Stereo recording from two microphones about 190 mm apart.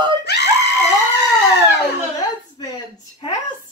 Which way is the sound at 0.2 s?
60° left (ahead or behind).